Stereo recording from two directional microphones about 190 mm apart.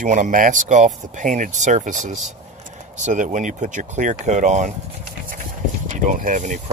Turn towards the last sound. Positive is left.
turn(degrees=-45)  # may be behind; listen again after turning